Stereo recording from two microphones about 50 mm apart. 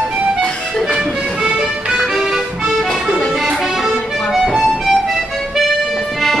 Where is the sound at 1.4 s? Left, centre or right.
Centre.